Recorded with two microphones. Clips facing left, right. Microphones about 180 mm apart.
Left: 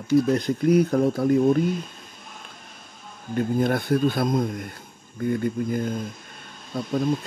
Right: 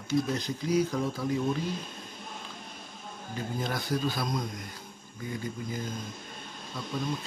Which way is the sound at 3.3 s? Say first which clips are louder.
Left 11 dB; 55° left (ahead or behind).